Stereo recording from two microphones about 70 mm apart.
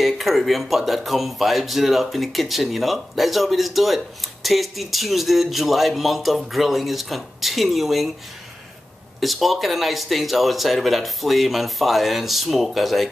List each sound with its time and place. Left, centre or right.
0.0 s speech: centre
9.2 s speech: centre